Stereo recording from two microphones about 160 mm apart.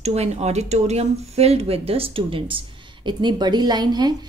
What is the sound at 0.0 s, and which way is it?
Speech, 40° right (ahead or behind).